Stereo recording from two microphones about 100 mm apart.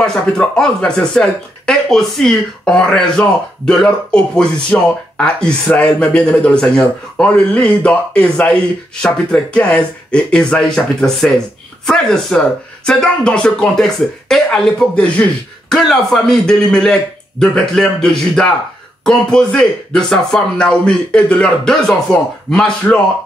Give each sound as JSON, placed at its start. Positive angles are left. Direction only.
{"t": 0.0, "sound": "speech", "side_deg": 5}